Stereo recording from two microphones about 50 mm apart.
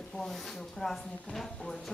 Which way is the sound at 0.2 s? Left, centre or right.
Centre.